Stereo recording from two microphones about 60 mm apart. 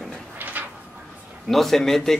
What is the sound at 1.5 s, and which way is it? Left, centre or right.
Speech, centre.